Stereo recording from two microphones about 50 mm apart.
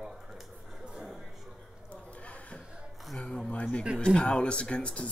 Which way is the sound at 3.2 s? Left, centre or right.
Centre.